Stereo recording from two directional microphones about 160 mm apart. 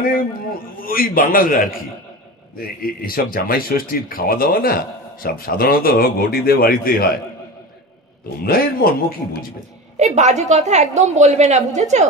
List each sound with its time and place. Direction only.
0.7 s a man's voice: 65° left (ahead or behind)
8.4 s speech: 70° left (ahead or behind)
9.9 s a woman's voice: 45° right (ahead or behind)